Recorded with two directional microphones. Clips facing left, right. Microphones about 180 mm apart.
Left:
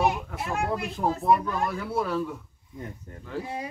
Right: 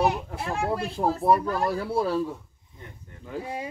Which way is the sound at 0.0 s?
30° right (ahead or behind).